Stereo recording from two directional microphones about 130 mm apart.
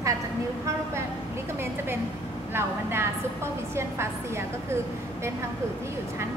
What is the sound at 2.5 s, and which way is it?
A woman's voice, 20° right (ahead or behind).